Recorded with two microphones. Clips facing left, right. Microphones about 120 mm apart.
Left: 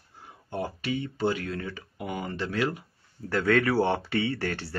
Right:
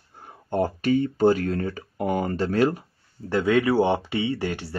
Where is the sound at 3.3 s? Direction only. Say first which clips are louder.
Right 3 dB; 15° right (ahead or behind).